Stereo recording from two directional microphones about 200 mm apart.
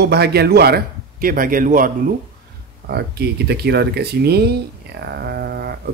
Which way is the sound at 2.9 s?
55° right (ahead or behind).